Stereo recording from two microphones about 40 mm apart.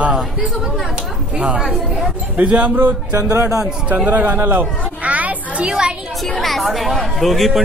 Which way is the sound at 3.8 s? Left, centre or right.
Right.